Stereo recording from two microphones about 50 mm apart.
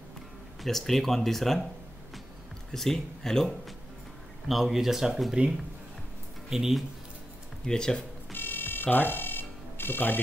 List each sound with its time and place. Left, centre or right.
0.7 s speech: centre
2.7 s speech: centre
4.5 s speech: centre
6.5 s speech: centre
7.6 s speech: centre
8.3 s music: left
8.8 s a sound: left